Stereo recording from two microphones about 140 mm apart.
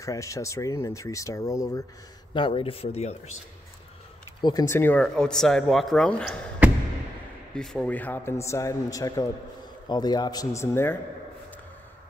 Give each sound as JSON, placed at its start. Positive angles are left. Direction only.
{"t": 0.0, "sound": "speech", "side_deg": 25}
{"t": 2.3, "sound": "speech", "side_deg": 40}
{"t": 4.4, "sound": "speech", "side_deg": 30}
{"t": 4.6, "sound": "speech", "side_deg": 15}
{"t": 7.5, "sound": "a man's voice", "side_deg": 5}